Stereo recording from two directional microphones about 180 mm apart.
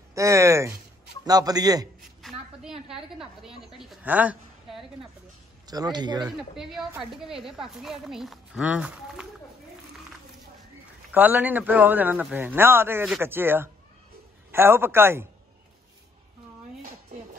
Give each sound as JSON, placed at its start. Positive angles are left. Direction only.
{"t": 0.1, "sound": "a man's voice", "side_deg": -15}
{"t": 2.2, "sound": "a woman's voice", "side_deg": -5}
{"t": 5.7, "sound": "a man's voice", "side_deg": -20}
{"t": 6.5, "sound": "speech", "side_deg": 0}
{"t": 11.1, "sound": "a man's voice", "side_deg": -10}